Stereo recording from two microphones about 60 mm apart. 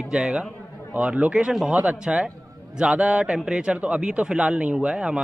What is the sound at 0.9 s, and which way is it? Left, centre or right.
Speech, centre.